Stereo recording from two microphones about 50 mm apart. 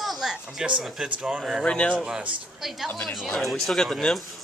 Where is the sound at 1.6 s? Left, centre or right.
Left.